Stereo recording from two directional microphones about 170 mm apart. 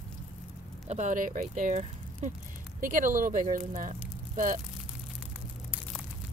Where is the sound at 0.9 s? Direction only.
45° right (ahead or behind).